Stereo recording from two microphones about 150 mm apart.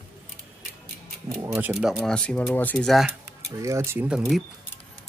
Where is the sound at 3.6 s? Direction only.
20° right (ahead or behind).